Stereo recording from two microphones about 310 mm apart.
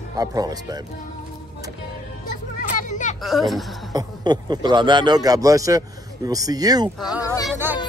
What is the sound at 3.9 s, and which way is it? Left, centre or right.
A man's voice, centre.